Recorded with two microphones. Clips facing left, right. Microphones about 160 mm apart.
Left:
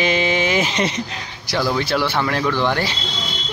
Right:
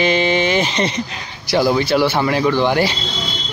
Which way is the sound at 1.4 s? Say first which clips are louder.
Right 5 dB; 10° right (ahead or behind).